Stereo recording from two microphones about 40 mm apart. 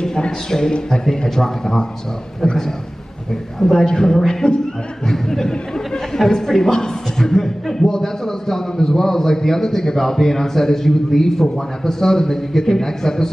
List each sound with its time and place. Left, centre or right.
0.0 s a man's voice: centre